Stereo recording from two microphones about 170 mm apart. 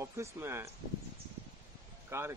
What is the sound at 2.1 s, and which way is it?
Speech, 15° right (ahead or behind).